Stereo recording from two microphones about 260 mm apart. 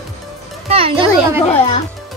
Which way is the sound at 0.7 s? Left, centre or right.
Right.